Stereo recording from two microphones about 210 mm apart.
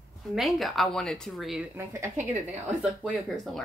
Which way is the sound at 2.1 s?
35° right (ahead or behind).